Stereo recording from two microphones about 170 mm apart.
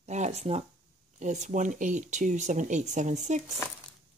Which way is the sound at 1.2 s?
45° right (ahead or behind).